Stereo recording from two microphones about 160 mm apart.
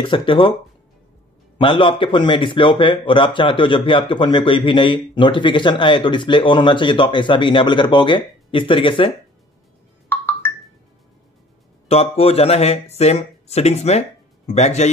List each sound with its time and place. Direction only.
0.0 s a man's voice: 30° left (ahead or behind)
1.6 s a man's voice: 30° left (ahead or behind)
10.0 s music: 15° left (ahead or behind)
11.9 s a man's voice: 40° left (ahead or behind)